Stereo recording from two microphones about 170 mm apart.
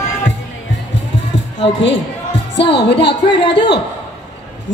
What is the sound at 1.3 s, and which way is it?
Music, 90° left.